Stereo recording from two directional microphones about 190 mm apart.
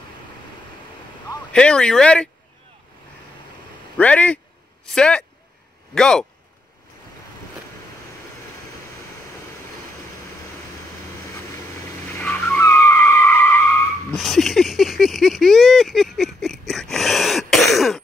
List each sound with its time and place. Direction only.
1.5 s speech: 5° left (ahead or behind)
4.0 s a man's voice: 5° left (ahead or behind)
11.2 s vehicle: 15° left (ahead or behind)
13.0 s skidding: 15° left (ahead or behind)
14.1 s a sound: centre (ahead or behind)